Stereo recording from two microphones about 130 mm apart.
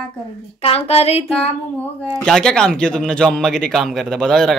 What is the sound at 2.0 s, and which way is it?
Speech, 5° left (ahead or behind).